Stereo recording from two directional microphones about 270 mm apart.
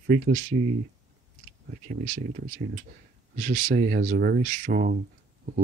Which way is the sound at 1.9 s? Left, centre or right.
Right.